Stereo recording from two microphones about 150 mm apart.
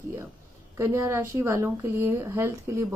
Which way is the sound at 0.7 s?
20° right (ahead or behind).